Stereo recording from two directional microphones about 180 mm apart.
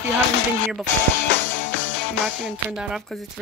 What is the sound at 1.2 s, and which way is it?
Music, 85° left.